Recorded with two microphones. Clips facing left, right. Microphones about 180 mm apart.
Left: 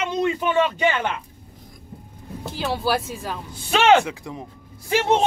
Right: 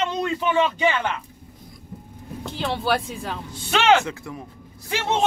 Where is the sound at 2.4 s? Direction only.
5° left (ahead or behind).